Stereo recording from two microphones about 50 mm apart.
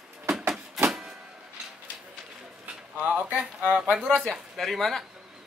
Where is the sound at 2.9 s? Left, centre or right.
Right.